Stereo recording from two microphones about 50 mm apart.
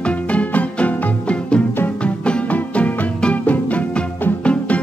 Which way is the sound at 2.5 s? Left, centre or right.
Left.